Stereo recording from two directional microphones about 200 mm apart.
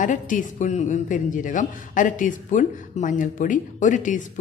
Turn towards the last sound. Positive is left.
turn(degrees=40)  # may be behind; listen again after turning